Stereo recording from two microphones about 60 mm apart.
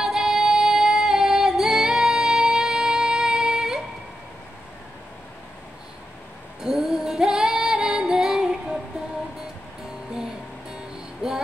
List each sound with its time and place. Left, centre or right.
0.0 s music: centre
6.6 s female singing: centre
10.1 s music: centre